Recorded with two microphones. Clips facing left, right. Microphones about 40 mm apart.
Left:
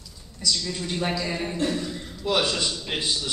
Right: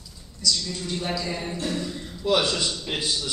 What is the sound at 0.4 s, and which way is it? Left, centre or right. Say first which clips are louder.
A woman's voice: even; centre.